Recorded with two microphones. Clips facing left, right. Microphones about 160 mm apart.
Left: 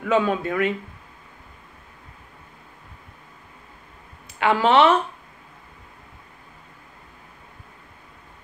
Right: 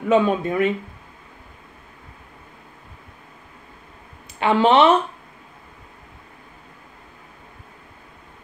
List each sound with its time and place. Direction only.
0.0 s speech: 20° right (ahead or behind)
4.4 s speech: 20° right (ahead or behind)